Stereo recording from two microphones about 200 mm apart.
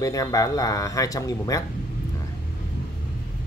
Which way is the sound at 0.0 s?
15° left (ahead or behind).